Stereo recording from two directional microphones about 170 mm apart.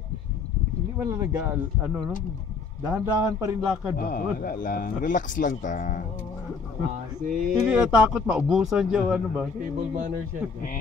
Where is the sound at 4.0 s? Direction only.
55° left (ahead or behind).